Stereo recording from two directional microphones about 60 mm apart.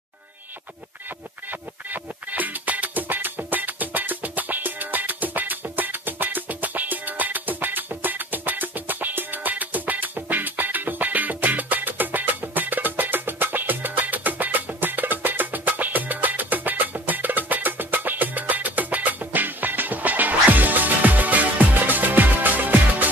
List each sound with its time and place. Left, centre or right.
1.5 s music: right